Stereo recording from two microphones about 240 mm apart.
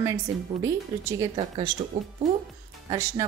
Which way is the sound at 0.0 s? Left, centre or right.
Centre.